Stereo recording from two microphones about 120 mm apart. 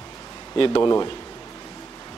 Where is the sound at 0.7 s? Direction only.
30° left (ahead or behind).